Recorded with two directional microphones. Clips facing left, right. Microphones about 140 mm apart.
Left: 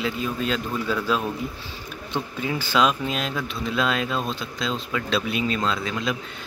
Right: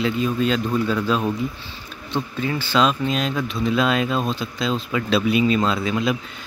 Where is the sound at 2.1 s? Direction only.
10° left (ahead or behind); by 6.2 s 10° right (ahead or behind).